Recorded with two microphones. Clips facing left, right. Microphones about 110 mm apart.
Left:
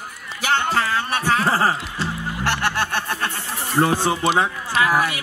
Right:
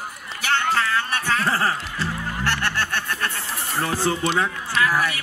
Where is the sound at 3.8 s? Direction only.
20° left (ahead or behind).